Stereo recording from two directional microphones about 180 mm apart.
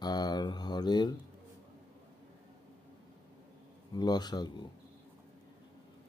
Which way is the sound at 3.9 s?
25° left (ahead or behind).